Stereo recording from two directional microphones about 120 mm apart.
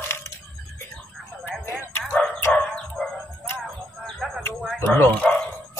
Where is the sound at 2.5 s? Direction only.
5° left (ahead or behind).